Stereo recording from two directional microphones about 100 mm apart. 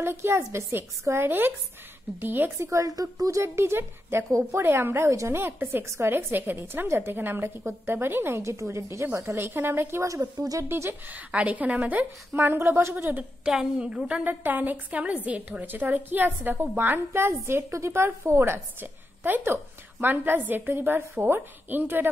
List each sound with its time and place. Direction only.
0.0 s a woman's voice: 25° right (ahead or behind)
10.6 s a woman's voice: 25° right (ahead or behind)
13.5 s a woman's voice: 5° right (ahead or behind)